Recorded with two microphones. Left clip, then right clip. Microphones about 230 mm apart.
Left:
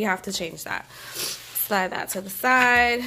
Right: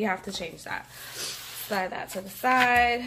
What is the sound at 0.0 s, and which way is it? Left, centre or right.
A woman's voice, left.